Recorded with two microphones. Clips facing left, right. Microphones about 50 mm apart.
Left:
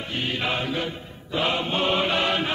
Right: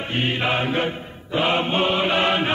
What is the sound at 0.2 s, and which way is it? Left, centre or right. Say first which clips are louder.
Music: right 4 dB; right.